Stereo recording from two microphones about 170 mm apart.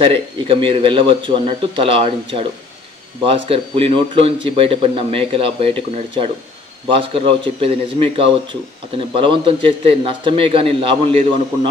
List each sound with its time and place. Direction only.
0.0 s a man's voice: 30° right (ahead or behind)
3.3 s a man's voice: 35° right (ahead or behind)